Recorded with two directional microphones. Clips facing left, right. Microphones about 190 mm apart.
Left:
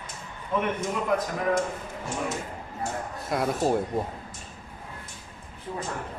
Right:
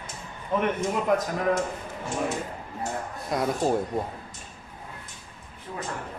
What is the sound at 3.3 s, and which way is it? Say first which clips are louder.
Speech: even; centre (ahead or behind).